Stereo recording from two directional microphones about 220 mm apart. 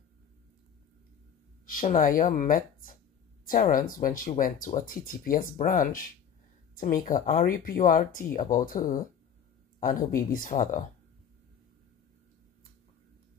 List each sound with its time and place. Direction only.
1.7 s speech: 40° left (ahead or behind)